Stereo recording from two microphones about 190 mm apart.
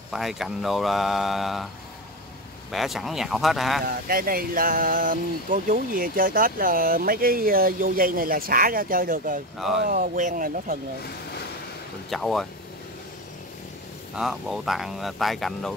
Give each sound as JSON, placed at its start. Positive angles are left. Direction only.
{"t": 0.1, "sound": "speech", "side_deg": 0}
{"t": 2.7, "sound": "speech", "side_deg": 0}
{"t": 3.8, "sound": "speech", "side_deg": -50}
{"t": 12.1, "sound": "speech", "side_deg": 0}
{"t": 14.1, "sound": "speech", "side_deg": 0}